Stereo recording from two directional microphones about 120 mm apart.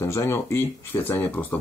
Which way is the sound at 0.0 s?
20° left (ahead or behind).